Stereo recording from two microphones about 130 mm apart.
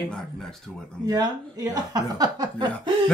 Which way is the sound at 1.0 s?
30° right (ahead or behind).